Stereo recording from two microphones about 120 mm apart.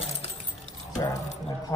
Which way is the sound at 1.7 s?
30° left (ahead or behind).